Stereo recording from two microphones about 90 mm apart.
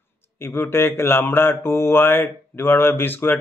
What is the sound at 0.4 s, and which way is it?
Mantra, 25° left (ahead or behind).